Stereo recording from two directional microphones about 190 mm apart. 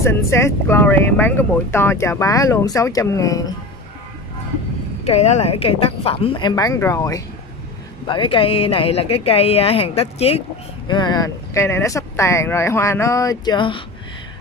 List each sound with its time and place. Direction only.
0.0 s speech: 15° left (ahead or behind)
5.0 s speech: 35° left (ahead or behind)